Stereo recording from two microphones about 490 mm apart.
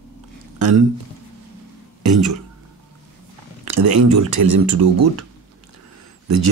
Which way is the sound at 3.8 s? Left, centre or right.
Right.